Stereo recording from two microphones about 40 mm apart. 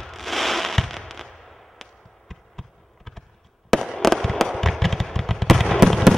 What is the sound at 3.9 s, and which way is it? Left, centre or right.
Fireworks, centre.